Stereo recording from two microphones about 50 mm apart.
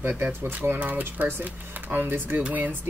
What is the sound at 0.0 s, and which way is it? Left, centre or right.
Speech, right.